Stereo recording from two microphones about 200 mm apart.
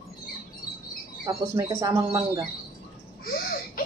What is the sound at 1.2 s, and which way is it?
Speech, 15° right (ahead or behind).